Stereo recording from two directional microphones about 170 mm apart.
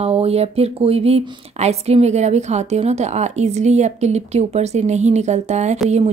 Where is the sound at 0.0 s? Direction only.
35° right (ahead or behind).